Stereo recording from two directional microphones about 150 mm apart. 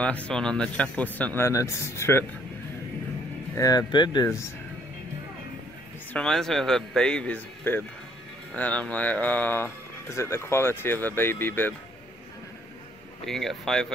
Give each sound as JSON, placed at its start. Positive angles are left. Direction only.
{"t": 0.0, "sound": "speech", "side_deg": 10}
{"t": 3.5, "sound": "speech", "side_deg": 25}
{"t": 6.1, "sound": "speech", "side_deg": 5}
{"t": 13.2, "sound": "speech", "side_deg": 0}